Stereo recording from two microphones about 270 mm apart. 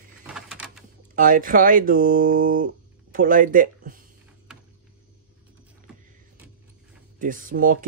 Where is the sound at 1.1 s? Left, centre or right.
Right.